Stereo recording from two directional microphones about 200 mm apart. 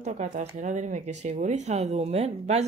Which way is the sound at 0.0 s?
35° right (ahead or behind).